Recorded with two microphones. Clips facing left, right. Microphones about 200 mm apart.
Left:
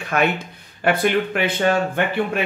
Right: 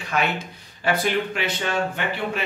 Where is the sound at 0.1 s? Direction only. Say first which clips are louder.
Left 4 dB; 55° left (ahead or behind).